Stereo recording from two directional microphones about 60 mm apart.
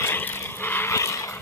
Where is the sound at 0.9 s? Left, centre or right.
Left.